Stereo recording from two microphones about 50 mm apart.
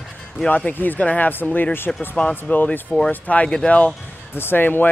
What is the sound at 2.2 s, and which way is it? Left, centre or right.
A man's voice, left.